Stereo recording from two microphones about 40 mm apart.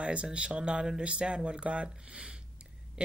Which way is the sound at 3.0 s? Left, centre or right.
Right.